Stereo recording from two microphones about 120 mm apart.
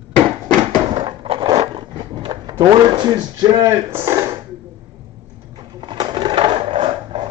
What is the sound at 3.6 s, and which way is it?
Speech, 25° right (ahead or behind).